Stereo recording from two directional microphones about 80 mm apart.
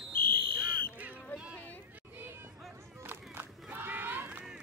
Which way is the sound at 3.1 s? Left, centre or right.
Right.